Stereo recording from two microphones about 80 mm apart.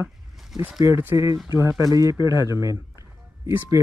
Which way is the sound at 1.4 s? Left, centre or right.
Right.